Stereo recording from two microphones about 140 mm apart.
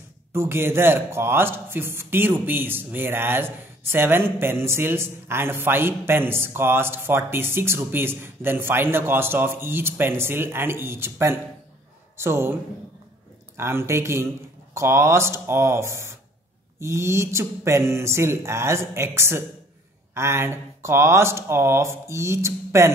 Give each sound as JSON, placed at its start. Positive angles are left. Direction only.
{"t": 0.3, "sound": "a man's voice", "side_deg": -15}
{"t": 13.6, "sound": "speech", "side_deg": -20}